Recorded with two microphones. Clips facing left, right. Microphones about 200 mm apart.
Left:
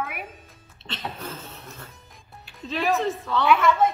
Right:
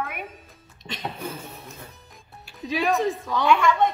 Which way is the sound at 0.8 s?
15° right (ahead or behind).